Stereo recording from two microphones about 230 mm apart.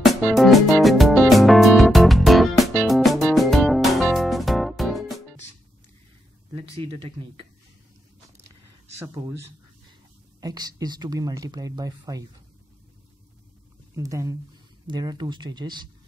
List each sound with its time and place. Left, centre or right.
0.0 s music: centre
6.8 s speech: right
8.9 s speech: centre
13.9 s speech: centre